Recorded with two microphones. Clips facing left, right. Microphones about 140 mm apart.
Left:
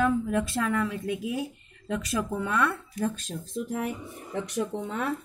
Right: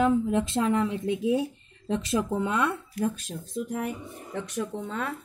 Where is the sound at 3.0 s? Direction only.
5° right (ahead or behind).